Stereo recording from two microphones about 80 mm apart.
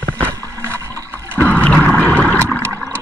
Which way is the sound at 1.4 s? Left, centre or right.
Centre.